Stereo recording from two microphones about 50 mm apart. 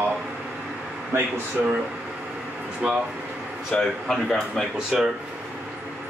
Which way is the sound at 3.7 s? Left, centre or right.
Centre.